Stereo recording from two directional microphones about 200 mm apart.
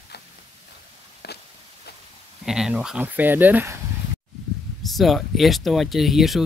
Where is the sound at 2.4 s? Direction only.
Centre (ahead or behind).